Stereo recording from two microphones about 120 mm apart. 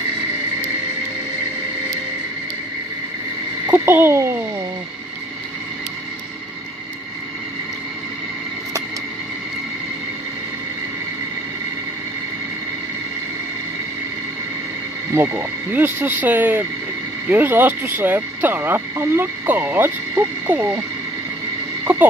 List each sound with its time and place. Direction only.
3.7 s speech: 20° right (ahead or behind)
15.1 s speech: 15° right (ahead or behind)
21.9 s a sound: 15° right (ahead or behind)